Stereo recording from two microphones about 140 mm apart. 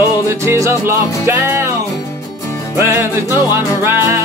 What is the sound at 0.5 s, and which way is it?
Music, 20° right (ahead or behind).